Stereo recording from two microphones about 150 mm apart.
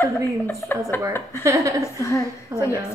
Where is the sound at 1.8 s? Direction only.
20° left (ahead or behind).